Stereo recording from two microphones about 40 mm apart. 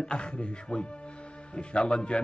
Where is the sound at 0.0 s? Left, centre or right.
Left.